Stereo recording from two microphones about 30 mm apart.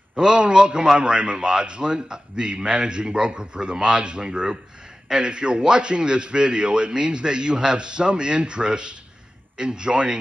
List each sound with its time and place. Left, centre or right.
0.1 s a man's voice: right